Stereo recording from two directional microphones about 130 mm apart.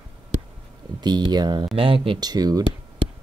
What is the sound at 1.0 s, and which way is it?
Speech, 35° right (ahead or behind).